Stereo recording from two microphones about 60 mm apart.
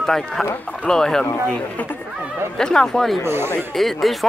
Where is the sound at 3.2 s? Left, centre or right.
Right.